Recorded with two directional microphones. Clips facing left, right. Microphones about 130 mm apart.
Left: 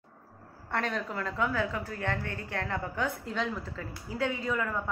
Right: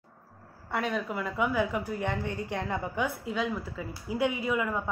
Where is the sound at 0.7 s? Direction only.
5° right (ahead or behind).